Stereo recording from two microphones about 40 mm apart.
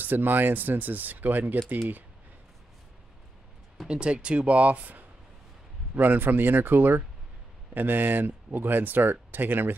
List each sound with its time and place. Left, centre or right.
0.0 s speech: right
3.8 s speech: right
5.9 s speech: right